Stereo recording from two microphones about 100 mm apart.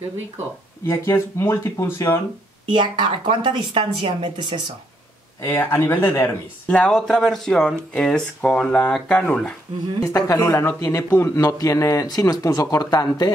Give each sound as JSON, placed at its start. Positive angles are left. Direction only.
{"t": 0.8, "sound": "speech", "side_deg": 25}
{"t": 2.7, "sound": "speech", "side_deg": -55}
{"t": 5.4, "sound": "speech", "side_deg": 25}
{"t": 6.9, "sound": "speech", "side_deg": 5}
{"t": 10.0, "sound": "speech", "side_deg": 35}
{"t": 11.1, "sound": "speech", "side_deg": 20}
{"t": 11.3, "sound": "speech", "side_deg": 35}